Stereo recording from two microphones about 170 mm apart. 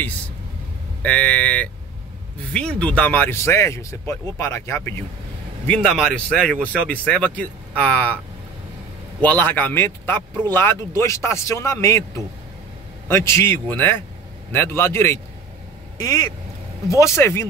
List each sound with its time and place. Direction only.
1.0 s speech: 10° left (ahead or behind)
9.2 s speech: 10° left (ahead or behind)
13.1 s speech: 15° left (ahead or behind)